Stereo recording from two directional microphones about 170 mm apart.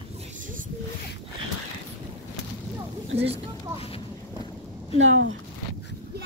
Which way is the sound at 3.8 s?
35° left (ahead or behind).